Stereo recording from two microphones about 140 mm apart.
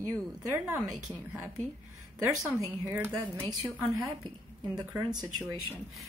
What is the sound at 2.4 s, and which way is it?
A woman's voice, 20° right (ahead or behind).